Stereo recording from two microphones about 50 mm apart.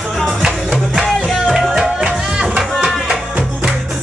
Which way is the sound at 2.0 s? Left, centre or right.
Centre.